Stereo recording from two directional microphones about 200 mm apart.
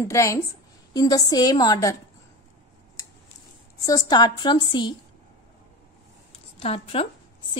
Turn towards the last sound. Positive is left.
turn(degrees=30)  # may be behind; listen again after turning